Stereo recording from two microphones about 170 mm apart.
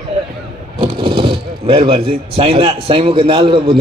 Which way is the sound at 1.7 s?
35° right (ahead or behind).